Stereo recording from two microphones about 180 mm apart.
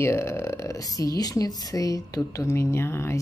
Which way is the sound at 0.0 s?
15° left (ahead or behind).